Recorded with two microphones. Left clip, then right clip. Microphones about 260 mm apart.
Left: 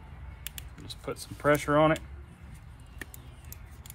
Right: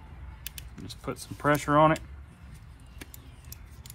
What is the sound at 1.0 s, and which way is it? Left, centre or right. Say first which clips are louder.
Speech: even; centre.